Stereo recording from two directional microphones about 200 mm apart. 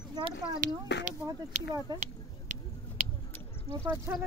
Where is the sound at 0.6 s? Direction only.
40° right (ahead or behind).